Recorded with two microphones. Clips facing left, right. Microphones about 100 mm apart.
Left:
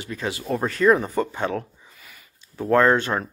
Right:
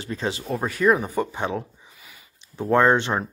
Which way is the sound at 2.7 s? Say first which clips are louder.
Even; 20° right (ahead or behind).